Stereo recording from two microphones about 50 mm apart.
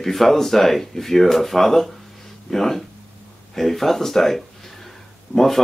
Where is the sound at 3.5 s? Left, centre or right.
Centre.